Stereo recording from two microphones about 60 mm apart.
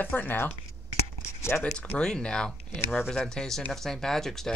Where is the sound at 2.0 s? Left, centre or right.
Centre.